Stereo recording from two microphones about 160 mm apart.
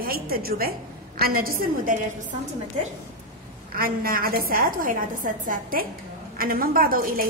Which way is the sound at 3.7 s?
65° right (ahead or behind).